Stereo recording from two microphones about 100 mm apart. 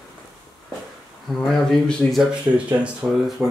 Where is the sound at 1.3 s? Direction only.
5° left (ahead or behind).